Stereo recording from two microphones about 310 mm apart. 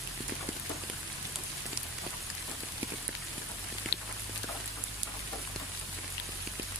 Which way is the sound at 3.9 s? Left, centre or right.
Left.